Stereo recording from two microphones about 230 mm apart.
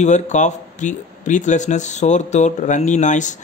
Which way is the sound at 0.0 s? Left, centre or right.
Left.